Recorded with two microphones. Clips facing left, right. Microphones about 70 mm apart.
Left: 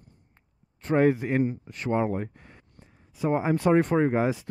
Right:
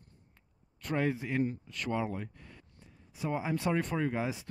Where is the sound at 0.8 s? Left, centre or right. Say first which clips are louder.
Left 10 dB; left.